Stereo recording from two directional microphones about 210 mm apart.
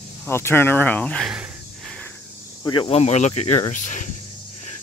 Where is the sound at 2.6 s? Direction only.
25° left (ahead or behind).